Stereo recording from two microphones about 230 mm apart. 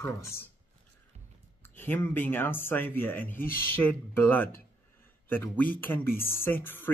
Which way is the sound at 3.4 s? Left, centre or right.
Left.